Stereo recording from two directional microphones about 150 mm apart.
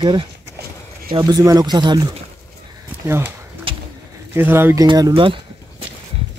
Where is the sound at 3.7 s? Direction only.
35° right (ahead or behind).